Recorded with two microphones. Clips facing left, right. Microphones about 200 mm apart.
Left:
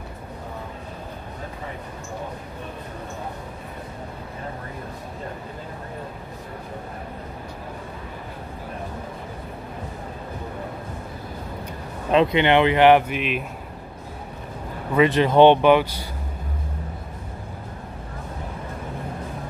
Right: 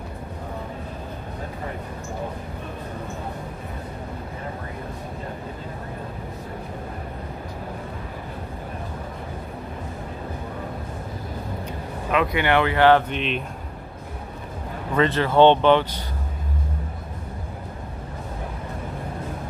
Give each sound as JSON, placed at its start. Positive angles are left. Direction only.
{"t": 12.1, "sound": "speech", "side_deg": 25}
{"t": 13.1, "sound": "speech", "side_deg": 5}
{"t": 15.0, "sound": "speech", "side_deg": 15}